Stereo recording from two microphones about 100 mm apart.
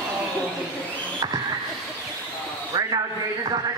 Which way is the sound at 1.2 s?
45° right (ahead or behind).